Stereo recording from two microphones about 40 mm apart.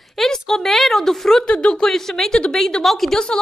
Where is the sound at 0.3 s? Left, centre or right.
Centre.